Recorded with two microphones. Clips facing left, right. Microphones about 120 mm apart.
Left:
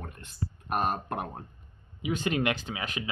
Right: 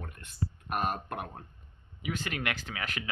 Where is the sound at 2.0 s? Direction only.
20° left (ahead or behind).